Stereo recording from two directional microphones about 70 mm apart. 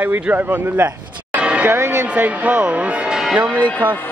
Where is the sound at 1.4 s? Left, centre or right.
Centre.